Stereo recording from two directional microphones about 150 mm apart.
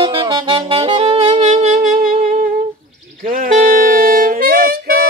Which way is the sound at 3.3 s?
65° right (ahead or behind).